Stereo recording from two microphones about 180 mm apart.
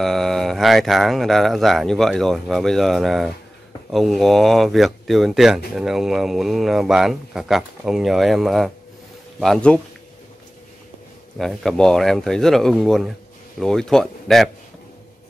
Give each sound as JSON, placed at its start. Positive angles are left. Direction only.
{"t": 0.0, "sound": "speech", "side_deg": 0}
{"t": 11.3, "sound": "speech", "side_deg": 0}